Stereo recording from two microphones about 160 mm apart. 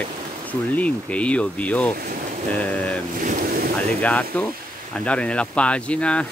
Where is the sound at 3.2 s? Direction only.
55° right (ahead or behind).